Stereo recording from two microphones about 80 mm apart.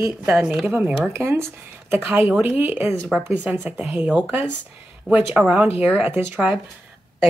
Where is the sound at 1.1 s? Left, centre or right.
Right.